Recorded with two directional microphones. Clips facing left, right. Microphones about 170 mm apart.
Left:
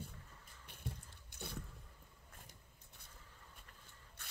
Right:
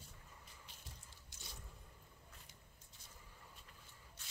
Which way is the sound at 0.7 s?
60° left (ahead or behind).